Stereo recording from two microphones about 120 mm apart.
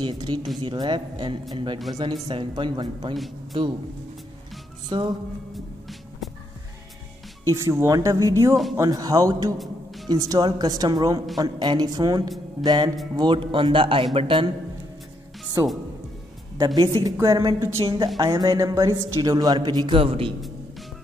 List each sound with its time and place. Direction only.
0.0 s a woman's voice: 35° right (ahead or behind)
4.8 s music: 40° right (ahead or behind)
7.5 s a woman's voice: 25° right (ahead or behind); by 14.5 s 45° right (ahead or behind)
16.5 s a woman's voice: 35° right (ahead or behind)
17.8 s a woman's voice: 40° right (ahead or behind)
20.0 s a man's voice: 50° right (ahead or behind)